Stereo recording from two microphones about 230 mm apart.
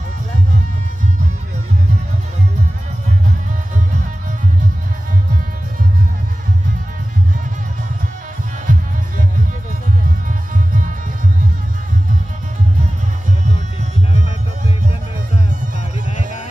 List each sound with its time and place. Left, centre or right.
8.7 s music: right
10.5 s music: right